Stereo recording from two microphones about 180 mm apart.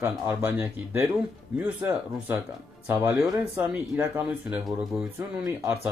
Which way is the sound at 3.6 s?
10° right (ahead or behind).